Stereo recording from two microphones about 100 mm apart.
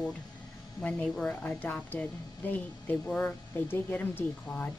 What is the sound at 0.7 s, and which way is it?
Speech, 10° left (ahead or behind).